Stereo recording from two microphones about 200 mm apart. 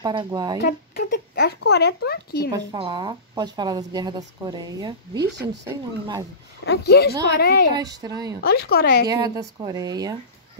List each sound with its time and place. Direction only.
0.0 s speech: 25° right (ahead or behind)
0.7 s speech: 55° left (ahead or behind)
2.7 s speech: 20° right (ahead or behind)
5.3 s speech: 60° right (ahead or behind)
6.6 s speech: 55° left (ahead or behind)
7.8 s speech: 20° right (ahead or behind)
8.4 s speech: 50° left (ahead or behind)
9.1 s speech: 20° right (ahead or behind)